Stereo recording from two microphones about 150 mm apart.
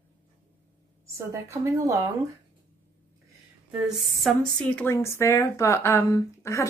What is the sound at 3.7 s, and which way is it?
Speech, centre (ahead or behind).